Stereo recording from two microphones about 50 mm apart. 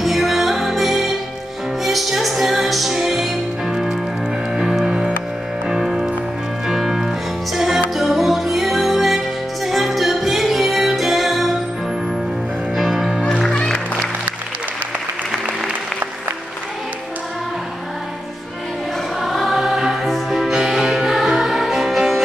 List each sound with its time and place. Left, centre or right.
0.0 s music: centre
12.7 s music: centre
13.4 s music: centre
19.2 s music: centre